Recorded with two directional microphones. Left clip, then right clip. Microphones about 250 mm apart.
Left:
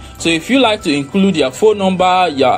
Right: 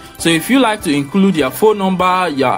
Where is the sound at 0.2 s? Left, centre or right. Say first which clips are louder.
Even; centre.